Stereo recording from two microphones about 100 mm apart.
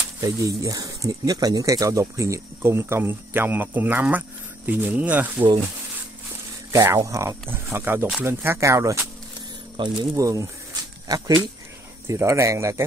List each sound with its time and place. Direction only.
0.2 s speech: 35° right (ahead or behind); by 5.5 s 15° right (ahead or behind)
6.7 s speech: 30° right (ahead or behind)
9.8 s speech: 50° right (ahead or behind)
10.1 s a sound: 35° right (ahead or behind)
12.1 s speech: 30° right (ahead or behind)